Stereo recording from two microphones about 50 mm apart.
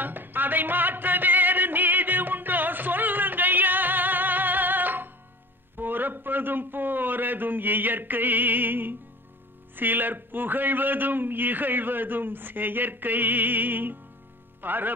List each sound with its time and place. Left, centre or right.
0.0 s music: right
5.8 s a sound: right
9.8 s a man's voice: right